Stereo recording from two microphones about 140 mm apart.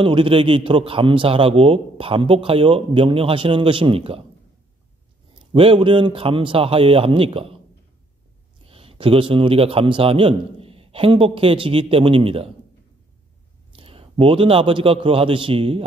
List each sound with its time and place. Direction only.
0.0 s a man's voice: 40° right (ahead or behind)
5.5 s a man's voice: 40° right (ahead or behind)
8.6 s a man's voice: 45° right (ahead or behind)
13.7 s a man's voice: 45° right (ahead or behind)